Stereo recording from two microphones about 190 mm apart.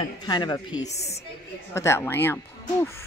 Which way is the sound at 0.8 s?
35° left (ahead or behind).